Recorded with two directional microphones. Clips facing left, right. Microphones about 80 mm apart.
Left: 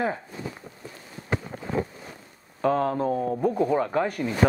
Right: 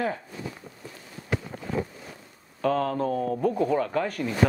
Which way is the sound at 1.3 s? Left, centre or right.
Left.